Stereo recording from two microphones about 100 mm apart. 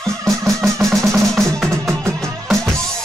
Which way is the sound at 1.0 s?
30° right (ahead or behind).